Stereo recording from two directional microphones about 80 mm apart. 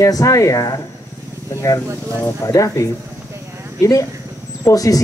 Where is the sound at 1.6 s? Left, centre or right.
Left.